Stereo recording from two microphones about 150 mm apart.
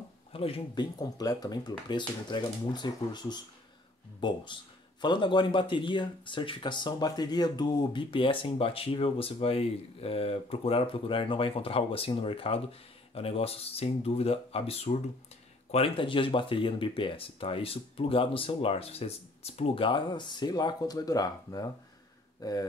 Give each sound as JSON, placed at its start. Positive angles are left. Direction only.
{"t": 0.3, "sound": "speech", "side_deg": 40}